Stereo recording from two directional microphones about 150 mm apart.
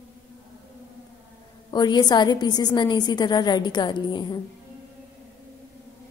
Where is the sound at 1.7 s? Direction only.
30° left (ahead or behind).